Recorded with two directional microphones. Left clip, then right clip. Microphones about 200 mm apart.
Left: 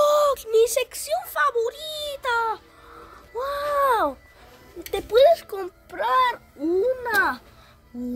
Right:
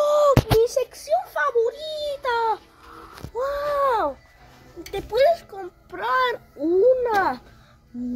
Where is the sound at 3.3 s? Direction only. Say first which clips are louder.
Right 1 dB; 25° left (ahead or behind).